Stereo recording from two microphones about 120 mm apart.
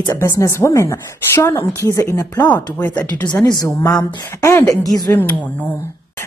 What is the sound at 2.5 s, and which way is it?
Speech, 15° left (ahead or behind).